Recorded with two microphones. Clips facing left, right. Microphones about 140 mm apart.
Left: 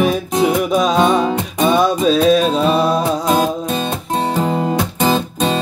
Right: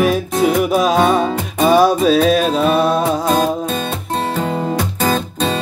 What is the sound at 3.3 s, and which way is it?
Music, 10° left (ahead or behind).